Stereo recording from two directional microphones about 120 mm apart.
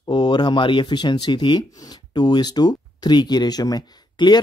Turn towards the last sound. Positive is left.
turn(degrees=35)  # may be behind; listen again after turning